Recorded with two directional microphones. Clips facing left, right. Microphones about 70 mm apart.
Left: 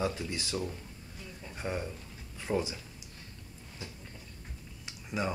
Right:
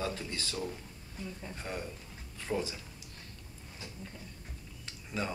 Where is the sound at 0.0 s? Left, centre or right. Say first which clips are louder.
Left 3 dB; centre.